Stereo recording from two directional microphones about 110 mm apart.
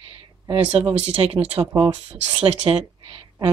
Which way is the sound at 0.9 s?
60° right (ahead or behind).